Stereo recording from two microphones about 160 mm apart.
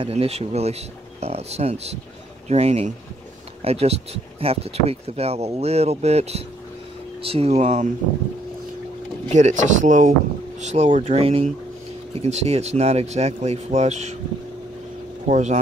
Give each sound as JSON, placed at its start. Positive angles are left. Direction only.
{"t": 0.0, "sound": "speech", "side_deg": -40}
{"t": 9.3, "sound": "speech", "side_deg": -50}
{"t": 15.2, "sound": "speech", "side_deg": -45}